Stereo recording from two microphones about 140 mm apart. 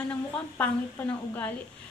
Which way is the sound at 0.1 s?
10° left (ahead or behind).